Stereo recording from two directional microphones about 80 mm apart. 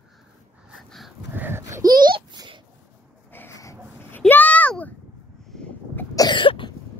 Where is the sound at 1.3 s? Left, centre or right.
Right.